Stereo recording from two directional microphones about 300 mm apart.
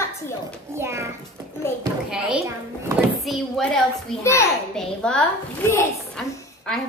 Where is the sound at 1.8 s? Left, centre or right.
Centre.